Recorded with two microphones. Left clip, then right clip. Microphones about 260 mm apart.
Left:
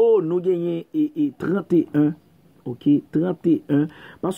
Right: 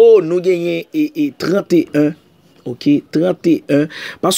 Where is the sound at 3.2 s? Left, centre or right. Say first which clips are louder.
Right 7 dB; centre.